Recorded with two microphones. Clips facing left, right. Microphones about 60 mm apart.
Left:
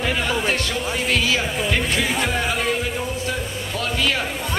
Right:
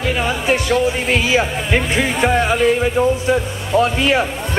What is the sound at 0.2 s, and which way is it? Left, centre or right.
Speech, centre.